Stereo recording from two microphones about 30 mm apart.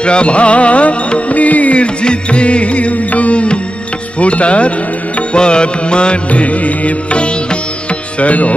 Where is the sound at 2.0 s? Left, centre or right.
Left.